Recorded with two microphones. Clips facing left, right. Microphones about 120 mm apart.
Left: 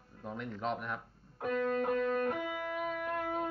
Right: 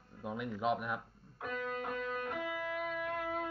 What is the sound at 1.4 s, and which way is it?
Music, 45° left (ahead or behind).